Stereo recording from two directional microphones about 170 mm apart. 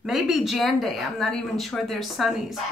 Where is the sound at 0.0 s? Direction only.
Centre (ahead or behind).